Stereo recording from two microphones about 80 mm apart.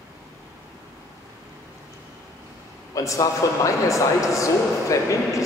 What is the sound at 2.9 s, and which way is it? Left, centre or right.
Speech, left.